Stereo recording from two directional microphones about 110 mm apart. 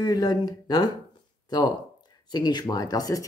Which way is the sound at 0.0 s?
35° left (ahead or behind).